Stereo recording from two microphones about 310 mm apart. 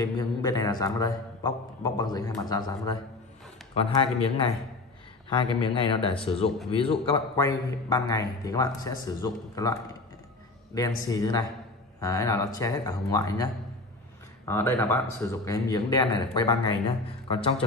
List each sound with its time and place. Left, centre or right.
0.0 s a man's voice: centre
14.5 s a man's voice: centre